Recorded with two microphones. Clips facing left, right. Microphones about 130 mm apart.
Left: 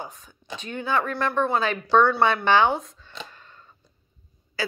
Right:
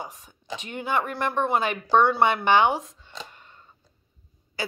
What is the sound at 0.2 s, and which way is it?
A woman's voice, 20° right (ahead or behind).